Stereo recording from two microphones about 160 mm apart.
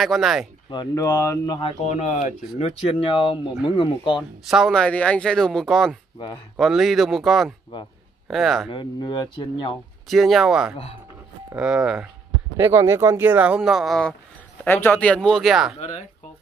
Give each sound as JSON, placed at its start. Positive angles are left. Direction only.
{"t": 0.0, "sound": "speech", "side_deg": 0}
{"t": 0.7, "sound": "speech", "side_deg": 25}
{"t": 1.6, "sound": "speech", "side_deg": 45}
{"t": 4.5, "sound": "speech", "side_deg": 0}
{"t": 8.6, "sound": "speech", "side_deg": 30}
{"t": 10.0, "sound": "speech", "side_deg": 0}
{"t": 14.6, "sound": "speech", "side_deg": 10}